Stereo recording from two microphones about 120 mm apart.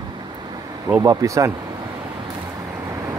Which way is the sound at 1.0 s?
25° right (ahead or behind).